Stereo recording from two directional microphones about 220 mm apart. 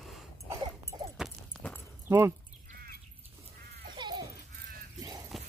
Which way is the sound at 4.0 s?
20° right (ahead or behind).